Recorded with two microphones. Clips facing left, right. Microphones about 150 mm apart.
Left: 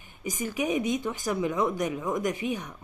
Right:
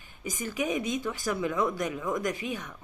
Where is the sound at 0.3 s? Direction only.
15° left (ahead or behind).